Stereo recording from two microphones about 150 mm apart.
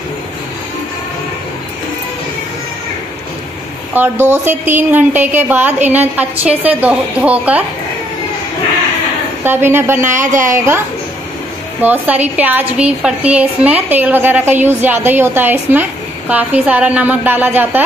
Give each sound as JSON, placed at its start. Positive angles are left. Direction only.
{"t": 3.9, "sound": "a woman's voice", "side_deg": -15}
{"t": 9.4, "sound": "a woman's voice", "side_deg": -15}
{"t": 10.2, "sound": "a woman's voice", "side_deg": -55}
{"t": 10.5, "sound": "a woman's voice", "side_deg": -20}
{"t": 11.8, "sound": "a woman's voice", "side_deg": -10}